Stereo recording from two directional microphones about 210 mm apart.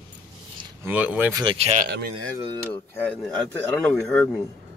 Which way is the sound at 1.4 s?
30° right (ahead or behind).